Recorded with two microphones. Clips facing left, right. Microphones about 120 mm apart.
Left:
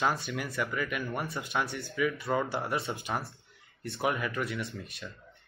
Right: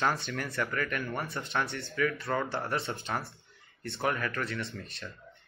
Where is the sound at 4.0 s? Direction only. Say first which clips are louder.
Left 1 dB; 10° left (ahead or behind).